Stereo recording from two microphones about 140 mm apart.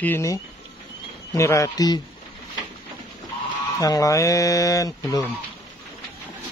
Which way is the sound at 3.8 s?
25° left (ahead or behind).